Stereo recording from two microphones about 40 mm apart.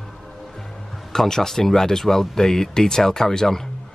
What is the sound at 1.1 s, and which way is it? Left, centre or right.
Speech, centre.